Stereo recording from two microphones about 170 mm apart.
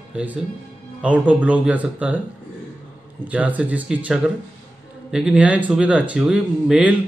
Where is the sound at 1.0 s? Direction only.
10° right (ahead or behind).